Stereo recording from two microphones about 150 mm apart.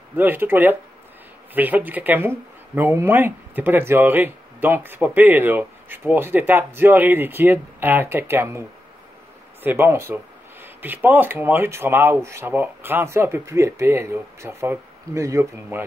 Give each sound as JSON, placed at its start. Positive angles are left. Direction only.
{"t": 0.2, "sound": "speech", "side_deg": -15}